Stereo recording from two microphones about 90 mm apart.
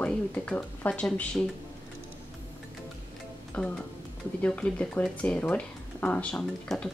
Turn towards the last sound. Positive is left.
turn(degrees=10)  # may be behind; listen again after turning